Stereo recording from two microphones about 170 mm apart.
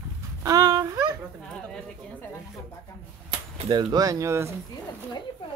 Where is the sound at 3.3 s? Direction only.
25° right (ahead or behind).